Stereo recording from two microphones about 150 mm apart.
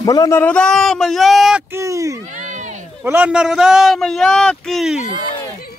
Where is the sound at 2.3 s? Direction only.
55° right (ahead or behind).